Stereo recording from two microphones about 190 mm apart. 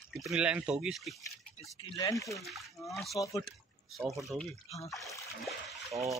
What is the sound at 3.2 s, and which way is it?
Speech, 15° left (ahead or behind).